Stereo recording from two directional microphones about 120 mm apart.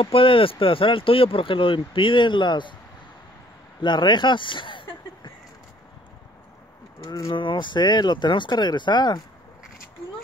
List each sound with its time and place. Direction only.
0.0 s speech: 50° left (ahead or behind)
3.8 s speech: 40° left (ahead or behind)
7.1 s speech: 25° left (ahead or behind)
7.3 s speech: 40° left (ahead or behind)